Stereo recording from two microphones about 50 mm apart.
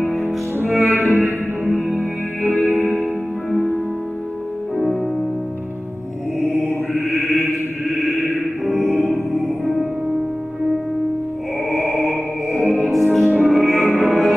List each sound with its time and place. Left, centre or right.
0.1 s music: centre
1.1 s music: right
2.8 s music: right
6.4 s mantra: centre
8.6 s music: centre
11.7 s music: centre